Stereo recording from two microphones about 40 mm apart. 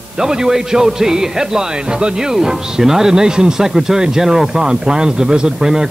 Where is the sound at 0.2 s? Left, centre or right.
Centre.